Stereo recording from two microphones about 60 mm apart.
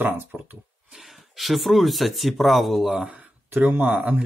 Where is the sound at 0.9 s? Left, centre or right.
Centre.